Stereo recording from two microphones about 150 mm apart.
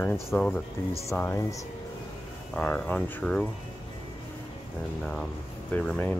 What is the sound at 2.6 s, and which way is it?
Speech, 5° left (ahead or behind).